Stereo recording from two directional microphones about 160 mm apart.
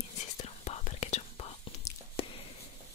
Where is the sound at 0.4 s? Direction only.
40° left (ahead or behind).